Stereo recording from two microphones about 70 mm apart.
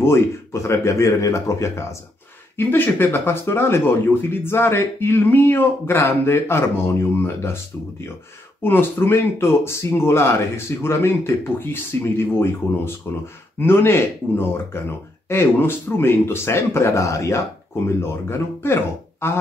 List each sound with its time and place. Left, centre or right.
0.0 s speech: left
2.5 s speech: left
8.6 s speech: left